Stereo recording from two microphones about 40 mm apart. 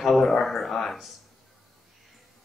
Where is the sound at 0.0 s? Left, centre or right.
Centre.